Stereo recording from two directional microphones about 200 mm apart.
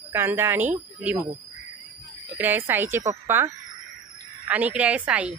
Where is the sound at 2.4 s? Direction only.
10° right (ahead or behind).